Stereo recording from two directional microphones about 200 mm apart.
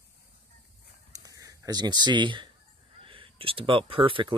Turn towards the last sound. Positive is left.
turn(degrees=-25)  # may be behind; listen again after turning